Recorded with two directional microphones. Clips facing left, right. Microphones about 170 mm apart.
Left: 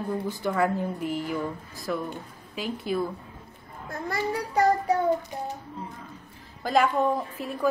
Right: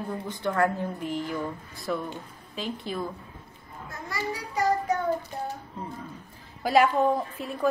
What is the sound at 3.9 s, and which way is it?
Children playing, 55° left (ahead or behind).